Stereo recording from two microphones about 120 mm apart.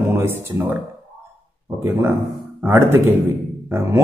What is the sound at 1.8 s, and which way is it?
Speech, 20° right (ahead or behind).